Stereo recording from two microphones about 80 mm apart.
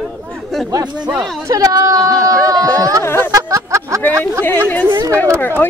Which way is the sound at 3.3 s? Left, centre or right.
Right.